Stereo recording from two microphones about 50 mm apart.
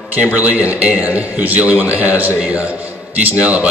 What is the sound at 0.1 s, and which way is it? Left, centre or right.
A man's voice, right.